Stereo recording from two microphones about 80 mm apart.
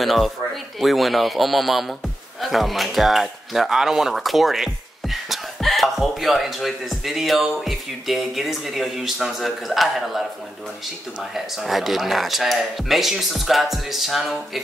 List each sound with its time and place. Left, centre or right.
0.0 s speech: centre
11.3 s speech: centre